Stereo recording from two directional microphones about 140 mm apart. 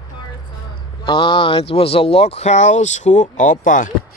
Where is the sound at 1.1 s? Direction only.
35° left (ahead or behind).